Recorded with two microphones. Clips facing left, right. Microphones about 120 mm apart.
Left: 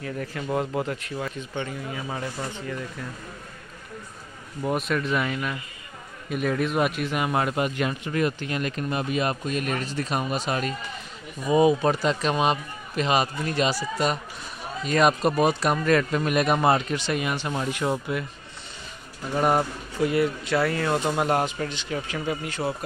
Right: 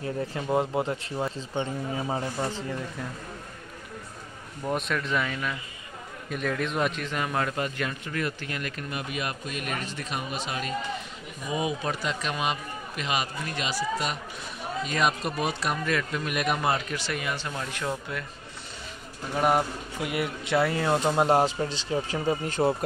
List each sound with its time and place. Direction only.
0.0 s speech: 25° right (ahead or behind)
4.6 s a man's voice: 5° left (ahead or behind)
19.4 s speech: 5° right (ahead or behind)
20.1 s speech: 15° right (ahead or behind); by 22.6 s 35° right (ahead or behind)